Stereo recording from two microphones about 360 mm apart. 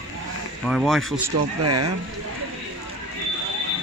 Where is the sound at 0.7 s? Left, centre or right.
Centre.